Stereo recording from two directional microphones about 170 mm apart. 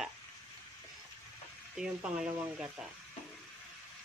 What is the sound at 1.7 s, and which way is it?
Speech, 5° right (ahead or behind).